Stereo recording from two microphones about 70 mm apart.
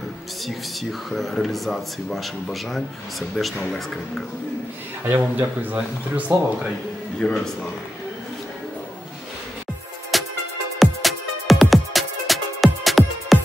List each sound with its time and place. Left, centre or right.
0.5 s a man's voice: centre
5.0 s speech: right
7.2 s a man's voice: centre
10.1 s music: centre